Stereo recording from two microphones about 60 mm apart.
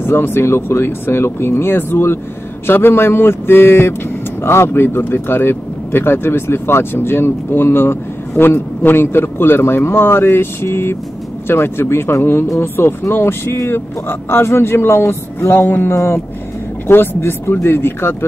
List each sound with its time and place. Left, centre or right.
0.0 s speech: left